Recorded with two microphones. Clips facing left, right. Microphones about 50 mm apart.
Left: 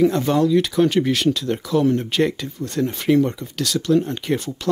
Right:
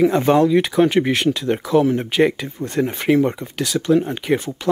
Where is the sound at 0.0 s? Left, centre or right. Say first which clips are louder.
Right 3 dB; right.